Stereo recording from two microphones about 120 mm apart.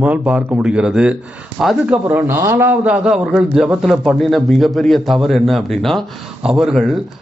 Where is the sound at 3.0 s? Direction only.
5° right (ahead or behind).